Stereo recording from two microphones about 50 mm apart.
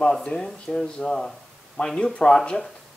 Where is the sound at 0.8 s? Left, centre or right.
Centre.